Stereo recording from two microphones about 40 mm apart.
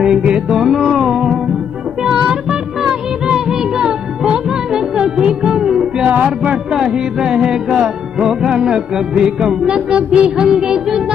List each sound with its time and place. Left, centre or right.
0.0 s music: right
3.3 s music: centre
6.0 s music: right
6.7 s music: centre